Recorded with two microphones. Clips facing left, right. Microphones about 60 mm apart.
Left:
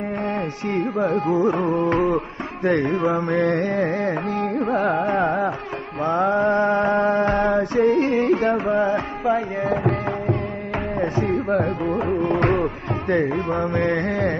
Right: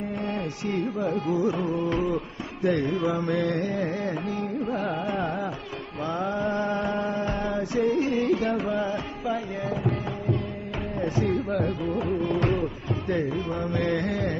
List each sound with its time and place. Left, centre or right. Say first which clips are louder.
0.7 s carnatic music: left 6 dB; left
4.6 s music: left 9 dB; left
5.0 s carnatic music: left 8 dB; left
6.0 s music: left 9 dB; left
9.7 s music: left 6 dB; left
11.0 s music: left 3 dB; left
13.8 s music: left 5 dB; left